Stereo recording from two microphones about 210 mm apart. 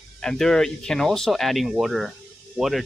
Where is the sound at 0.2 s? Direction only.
5° left (ahead or behind).